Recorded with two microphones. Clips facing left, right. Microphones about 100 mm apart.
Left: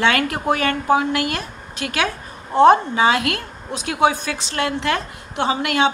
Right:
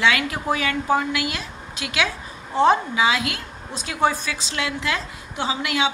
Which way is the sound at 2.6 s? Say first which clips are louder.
Left 5 dB; 55° left (ahead or behind).